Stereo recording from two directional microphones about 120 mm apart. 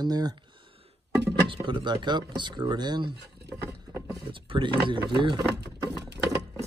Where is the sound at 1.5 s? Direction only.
40° right (ahead or behind).